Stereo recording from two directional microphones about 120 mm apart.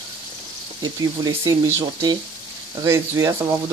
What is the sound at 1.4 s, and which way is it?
Speech, 20° right (ahead or behind).